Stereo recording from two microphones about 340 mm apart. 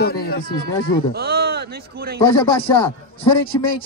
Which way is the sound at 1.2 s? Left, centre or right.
Right.